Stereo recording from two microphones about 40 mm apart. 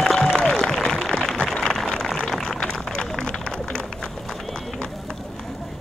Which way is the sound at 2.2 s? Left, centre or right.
Centre.